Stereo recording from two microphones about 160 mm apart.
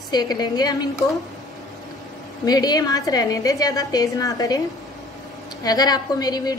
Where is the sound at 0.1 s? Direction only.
25° left (ahead or behind).